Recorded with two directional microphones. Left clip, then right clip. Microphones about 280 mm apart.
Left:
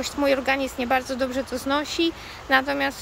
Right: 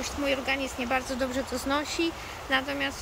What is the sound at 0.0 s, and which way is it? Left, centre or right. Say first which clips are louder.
Speech: left 7 dB; centre.